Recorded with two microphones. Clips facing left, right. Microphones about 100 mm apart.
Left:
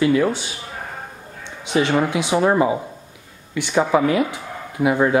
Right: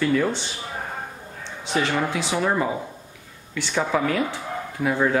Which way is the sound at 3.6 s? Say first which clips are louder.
Left 6 dB; 15° left (ahead or behind).